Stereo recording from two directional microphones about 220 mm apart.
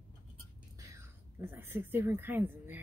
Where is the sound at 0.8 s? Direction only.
15° right (ahead or behind).